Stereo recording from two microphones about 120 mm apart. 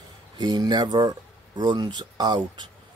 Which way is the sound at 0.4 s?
35° right (ahead or behind).